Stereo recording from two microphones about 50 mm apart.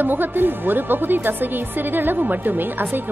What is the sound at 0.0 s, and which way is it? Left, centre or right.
A woman's voice, right.